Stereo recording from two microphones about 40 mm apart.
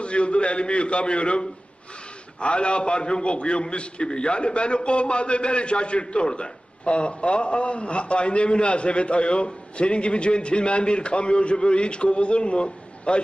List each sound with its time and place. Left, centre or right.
0.0 s a man's voice: left